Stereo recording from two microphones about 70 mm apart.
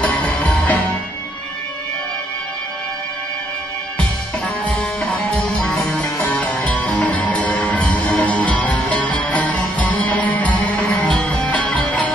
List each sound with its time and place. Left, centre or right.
0.0 s music: centre
4.6 s music: centre
5.4 s music: centre
6.2 s music: left